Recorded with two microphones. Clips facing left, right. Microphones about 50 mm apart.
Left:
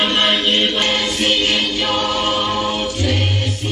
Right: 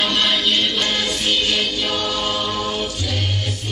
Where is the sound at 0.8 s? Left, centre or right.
Left.